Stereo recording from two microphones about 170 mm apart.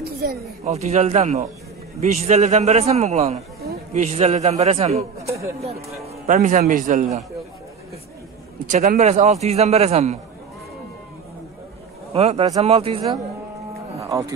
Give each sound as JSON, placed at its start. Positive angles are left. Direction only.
{"t": 0.2, "sound": "speech", "side_deg": -60}
{"t": 0.7, "sound": "a man's voice", "side_deg": -40}
{"t": 5.2, "sound": "speech", "side_deg": -15}
{"t": 6.2, "sound": "a man's voice", "side_deg": -45}
{"t": 8.6, "sound": "a man's voice", "side_deg": -45}
{"t": 12.1, "sound": "a man's voice", "side_deg": -35}
{"t": 14.0, "sound": "speech", "side_deg": -20}